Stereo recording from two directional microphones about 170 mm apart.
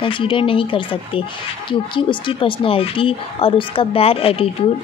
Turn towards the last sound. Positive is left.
turn(degrees=35)  # may be behind; listen again after turning